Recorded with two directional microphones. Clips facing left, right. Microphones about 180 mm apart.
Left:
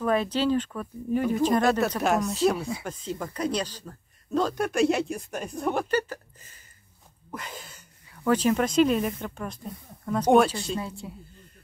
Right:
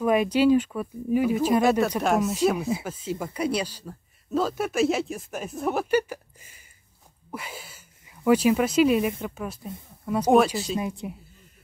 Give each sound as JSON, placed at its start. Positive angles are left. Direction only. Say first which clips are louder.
{"t": 0.0, "sound": "speech", "louder": "right 4 dB", "side_deg": -10}
{"t": 2.3, "sound": "speech", "louder": "right 1 dB", "side_deg": -15}
{"t": 2.8, "sound": "speech", "louder": "right 2 dB", "side_deg": -5}
{"t": 10.8, "sound": "speech", "louder": "right 4 dB", "side_deg": -15}